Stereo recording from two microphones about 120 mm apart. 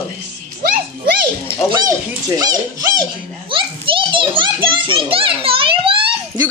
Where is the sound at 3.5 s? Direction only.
45° right (ahead or behind).